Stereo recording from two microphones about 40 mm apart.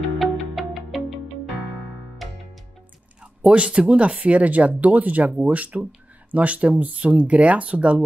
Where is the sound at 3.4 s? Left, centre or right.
Right.